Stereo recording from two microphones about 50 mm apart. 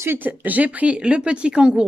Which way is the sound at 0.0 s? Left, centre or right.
Right.